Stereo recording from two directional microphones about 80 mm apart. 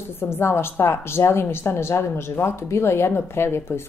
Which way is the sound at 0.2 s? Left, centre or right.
Left.